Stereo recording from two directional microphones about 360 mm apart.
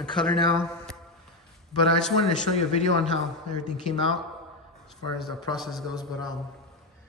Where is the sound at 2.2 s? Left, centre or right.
Centre.